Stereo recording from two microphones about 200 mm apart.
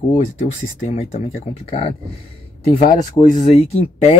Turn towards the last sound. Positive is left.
turn(degrees=30)  # may be behind; listen again after turning